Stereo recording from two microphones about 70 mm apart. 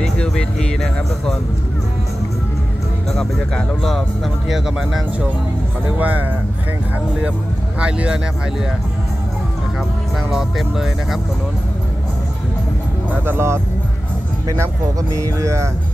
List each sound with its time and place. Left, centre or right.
0.0 s speech: centre
3.1 s speech: centre
5.9 s speech: right
7.8 s speech: centre
10.3 s speech: centre
13.2 s speech: right
14.6 s speech: right